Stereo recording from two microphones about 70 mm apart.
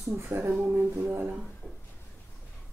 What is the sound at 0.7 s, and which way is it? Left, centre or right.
Music, right.